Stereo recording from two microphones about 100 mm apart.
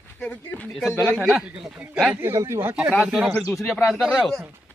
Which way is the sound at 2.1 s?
25° right (ahead or behind).